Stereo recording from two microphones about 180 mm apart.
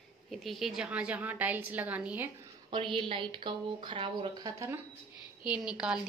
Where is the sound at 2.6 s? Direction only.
25° right (ahead or behind).